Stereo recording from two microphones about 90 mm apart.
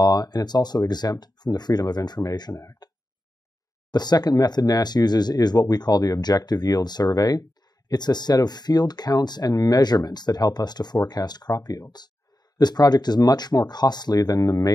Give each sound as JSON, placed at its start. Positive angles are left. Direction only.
{"t": 0.0, "sound": "speech", "side_deg": 45}
{"t": 3.9, "sound": "speech", "side_deg": 50}